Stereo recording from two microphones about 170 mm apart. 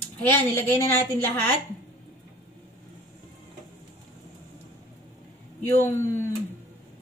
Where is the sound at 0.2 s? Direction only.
15° left (ahead or behind).